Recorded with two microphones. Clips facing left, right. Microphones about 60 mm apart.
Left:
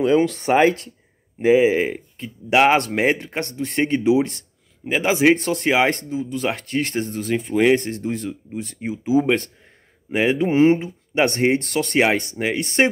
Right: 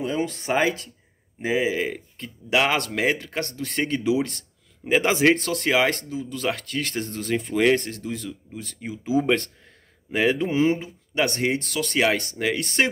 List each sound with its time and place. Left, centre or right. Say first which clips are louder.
0.0 s speech: left 9 dB; left
0.5 s speech: left 6 dB; left
4.8 s speech: left 2 dB; centre
5.3 s speech: left 3 dB; left
7.1 s speech: left 3 dB; centre
7.8 s speech: left 6 dB; left
9.0 s speech: left 3 dB; centre
10.5 s speech: left 6 dB; left